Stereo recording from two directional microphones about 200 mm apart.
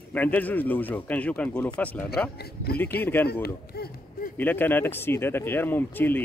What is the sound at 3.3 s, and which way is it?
Speech, 50° left (ahead or behind).